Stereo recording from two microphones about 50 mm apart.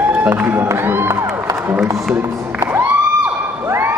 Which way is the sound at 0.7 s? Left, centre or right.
Right.